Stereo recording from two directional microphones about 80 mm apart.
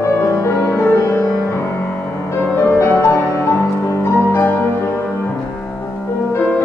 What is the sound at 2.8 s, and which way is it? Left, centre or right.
Music, left.